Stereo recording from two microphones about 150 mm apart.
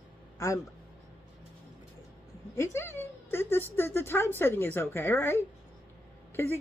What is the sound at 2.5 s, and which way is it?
Speech, 15° left (ahead or behind).